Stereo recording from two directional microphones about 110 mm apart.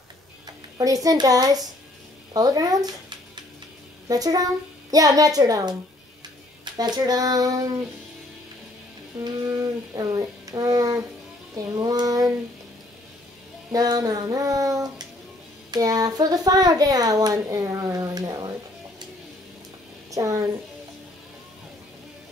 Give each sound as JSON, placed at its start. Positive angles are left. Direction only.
{"t": 0.5, "sound": "a child's voice", "side_deg": -30}
{"t": 9.9, "sound": "a child's voice", "side_deg": -35}
{"t": 13.7, "sound": "a child's voice", "side_deg": -35}
{"t": 20.1, "sound": "a woman's voice", "side_deg": -30}